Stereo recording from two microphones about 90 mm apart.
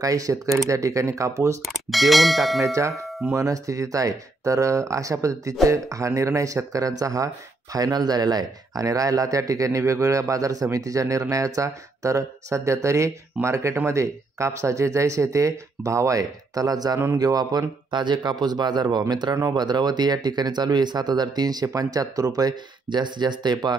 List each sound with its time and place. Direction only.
0.0 s speech: 40° right (ahead or behind)
1.7 s clang: centre (ahead or behind)
2.6 s speech: 35° right (ahead or behind)
3.1 s doorbell: centre (ahead or behind)
3.3 s speech: 40° right (ahead or behind)